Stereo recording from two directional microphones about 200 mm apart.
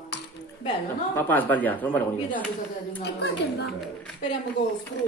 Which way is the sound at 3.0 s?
60° left (ahead or behind).